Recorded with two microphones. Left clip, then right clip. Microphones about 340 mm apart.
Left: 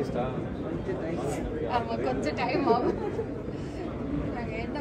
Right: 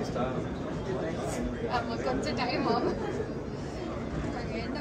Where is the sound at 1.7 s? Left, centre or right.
Left.